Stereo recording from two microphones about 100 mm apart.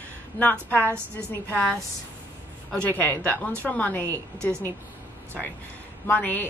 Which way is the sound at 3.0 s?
15° left (ahead or behind).